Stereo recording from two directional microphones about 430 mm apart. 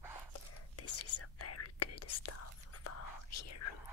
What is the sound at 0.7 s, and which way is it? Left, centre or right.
Whispering, left.